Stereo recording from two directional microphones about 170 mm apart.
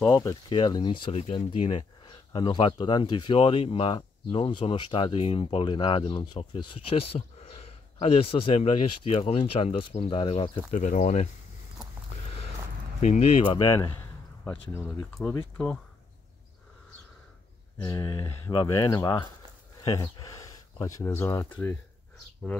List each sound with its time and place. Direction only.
0.0 s speech: 20° left (ahead or behind)
10.7 s speech: 45° left (ahead or behind)
13.0 s speech: 40° left (ahead or behind)
13.7 s a sound: 15° left (ahead or behind)
15.2 s speech: 15° left (ahead or behind)
17.8 s speech: 25° left (ahead or behind)